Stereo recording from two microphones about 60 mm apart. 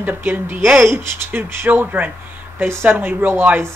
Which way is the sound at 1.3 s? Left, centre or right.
Right.